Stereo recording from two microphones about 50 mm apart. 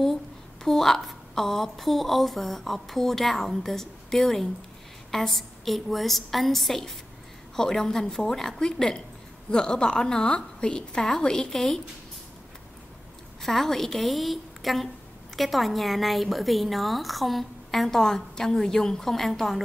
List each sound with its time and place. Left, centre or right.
0.7 s a woman's voice: centre
13.4 s speech: centre